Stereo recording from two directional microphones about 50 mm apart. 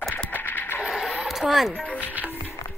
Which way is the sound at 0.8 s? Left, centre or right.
Centre.